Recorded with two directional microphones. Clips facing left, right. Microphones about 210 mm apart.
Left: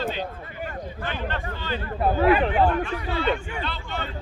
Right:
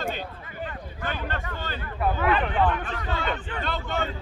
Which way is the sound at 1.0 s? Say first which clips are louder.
Even; 45° right (ahead or behind).